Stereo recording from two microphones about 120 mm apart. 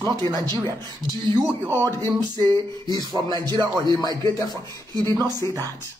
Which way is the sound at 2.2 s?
35° right (ahead or behind).